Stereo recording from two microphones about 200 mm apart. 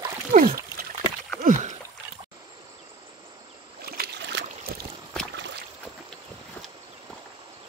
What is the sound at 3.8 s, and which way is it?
Boat, 50° right (ahead or behind).